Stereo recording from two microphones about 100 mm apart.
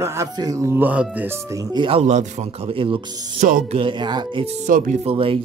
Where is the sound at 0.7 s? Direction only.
15° right (ahead or behind).